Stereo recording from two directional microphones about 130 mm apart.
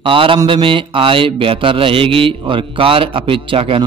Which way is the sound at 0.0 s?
40° right (ahead or behind).